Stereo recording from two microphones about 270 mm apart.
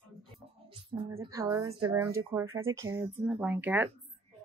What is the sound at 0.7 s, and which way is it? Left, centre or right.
Speech, centre.